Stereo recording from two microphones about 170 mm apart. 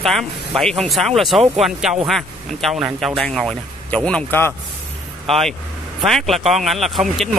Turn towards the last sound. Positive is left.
turn(degrees=0)  # may be behind; listen again after turning